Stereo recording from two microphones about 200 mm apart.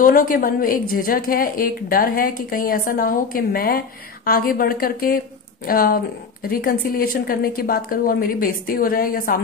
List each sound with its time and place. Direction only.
0.0 s a woman's voice: 45° left (ahead or behind)